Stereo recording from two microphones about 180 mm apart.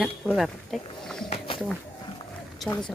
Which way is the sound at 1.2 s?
30° left (ahead or behind).